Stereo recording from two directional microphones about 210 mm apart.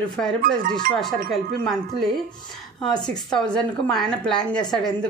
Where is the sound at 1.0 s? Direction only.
Centre (ahead or behind).